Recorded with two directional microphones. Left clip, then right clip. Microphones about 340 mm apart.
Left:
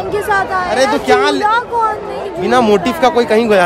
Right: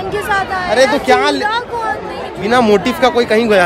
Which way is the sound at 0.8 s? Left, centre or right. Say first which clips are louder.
Left 2 dB; centre.